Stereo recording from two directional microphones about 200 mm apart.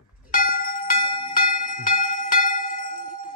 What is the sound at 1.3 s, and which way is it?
Music, 45° left (ahead or behind).